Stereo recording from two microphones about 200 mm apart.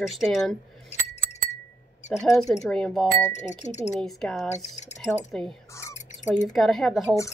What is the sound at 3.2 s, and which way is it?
Speech, 35° left (ahead or behind).